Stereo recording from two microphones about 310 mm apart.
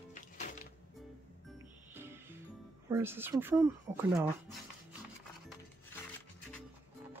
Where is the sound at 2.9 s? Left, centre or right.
Centre.